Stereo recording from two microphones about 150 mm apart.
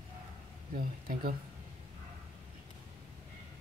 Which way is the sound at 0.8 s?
75° right (ahead or behind).